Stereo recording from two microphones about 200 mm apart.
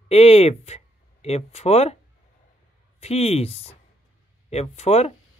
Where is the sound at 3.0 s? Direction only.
30° left (ahead or behind).